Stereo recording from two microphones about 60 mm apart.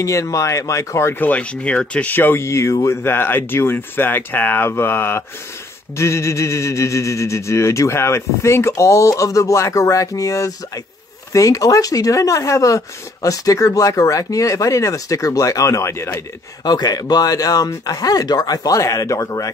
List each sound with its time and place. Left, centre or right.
0.0 s speech: left
1.2 s speech: left
2.1 s speech: left
2.4 s speech: left
5.9 s speech: left
16.8 s speech: left
18.8 s speech: left